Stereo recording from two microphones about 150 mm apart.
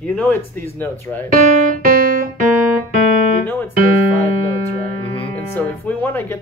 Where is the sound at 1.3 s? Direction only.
70° right (ahead or behind).